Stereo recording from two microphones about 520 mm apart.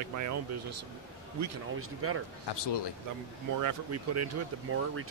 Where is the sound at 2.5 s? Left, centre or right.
Left.